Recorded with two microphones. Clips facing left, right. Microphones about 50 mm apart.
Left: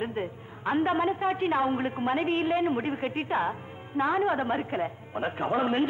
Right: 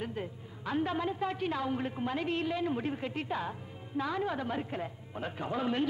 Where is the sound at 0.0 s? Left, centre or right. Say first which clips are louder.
Left 6 dB; left.